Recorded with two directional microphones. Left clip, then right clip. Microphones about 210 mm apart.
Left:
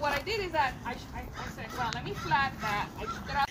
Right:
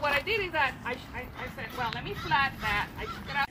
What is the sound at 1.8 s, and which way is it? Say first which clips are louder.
Speech: right 1 dB; 20° left (ahead or behind).